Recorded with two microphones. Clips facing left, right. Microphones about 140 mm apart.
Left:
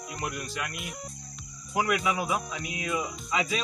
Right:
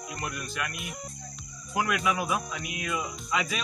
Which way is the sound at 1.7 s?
Centre (ahead or behind).